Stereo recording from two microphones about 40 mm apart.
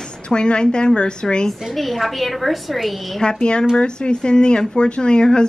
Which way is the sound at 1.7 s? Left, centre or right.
Centre.